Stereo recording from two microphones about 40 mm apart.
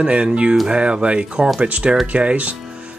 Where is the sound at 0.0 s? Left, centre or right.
Right.